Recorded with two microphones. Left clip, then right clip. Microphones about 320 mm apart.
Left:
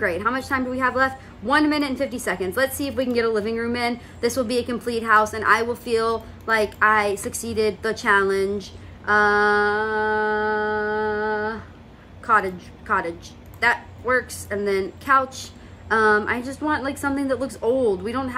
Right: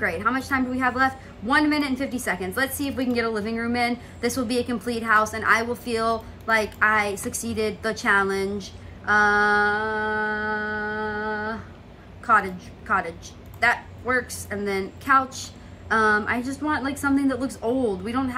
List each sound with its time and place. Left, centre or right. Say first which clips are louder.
0.0 s a woman's voice: left 1 dB; centre